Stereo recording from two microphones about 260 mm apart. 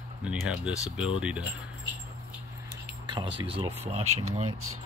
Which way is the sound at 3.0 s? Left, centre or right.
Centre.